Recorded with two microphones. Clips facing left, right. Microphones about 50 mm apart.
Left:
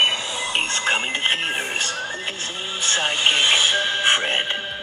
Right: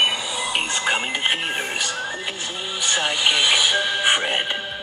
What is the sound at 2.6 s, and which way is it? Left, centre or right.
Vehicle, centre.